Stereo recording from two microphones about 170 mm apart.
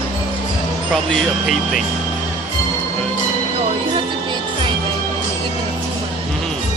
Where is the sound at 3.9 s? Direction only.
30° right (ahead or behind).